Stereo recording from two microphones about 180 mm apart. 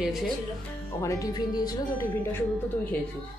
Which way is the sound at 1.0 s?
20° left (ahead or behind).